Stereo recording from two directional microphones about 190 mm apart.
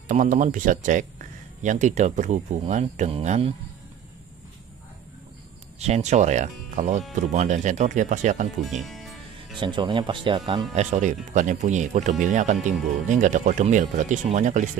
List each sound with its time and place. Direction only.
0.1 s speech: 45° right (ahead or behind)
5.8 s speech: 35° right (ahead or behind)
8.6 s music: centre (ahead or behind)
9.6 s speech: 25° right (ahead or behind); by 14.7 s 40° right (ahead or behind)